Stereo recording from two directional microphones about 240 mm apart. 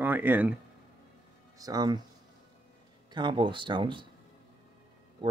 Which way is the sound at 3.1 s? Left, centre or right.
Centre.